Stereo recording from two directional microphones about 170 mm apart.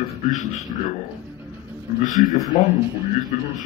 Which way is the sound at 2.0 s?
50° left (ahead or behind).